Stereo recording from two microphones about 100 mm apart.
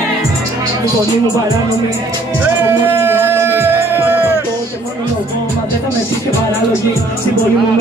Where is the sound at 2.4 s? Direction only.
20° right (ahead or behind).